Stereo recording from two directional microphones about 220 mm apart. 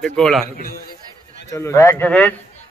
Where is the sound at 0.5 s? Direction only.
40° left (ahead or behind).